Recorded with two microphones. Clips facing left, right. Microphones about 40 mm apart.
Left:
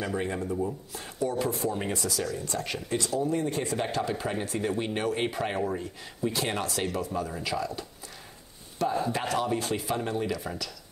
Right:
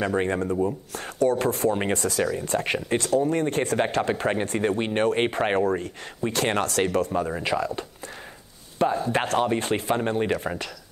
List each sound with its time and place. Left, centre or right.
0.0 s speech: right
7.1 s speech: right